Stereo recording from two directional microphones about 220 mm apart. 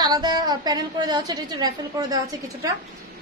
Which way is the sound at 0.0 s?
20° right (ahead or behind).